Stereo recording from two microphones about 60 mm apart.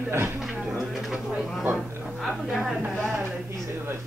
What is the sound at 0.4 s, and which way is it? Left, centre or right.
Speech, centre.